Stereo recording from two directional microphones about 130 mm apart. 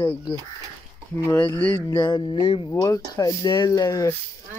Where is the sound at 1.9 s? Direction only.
35° left (ahead or behind).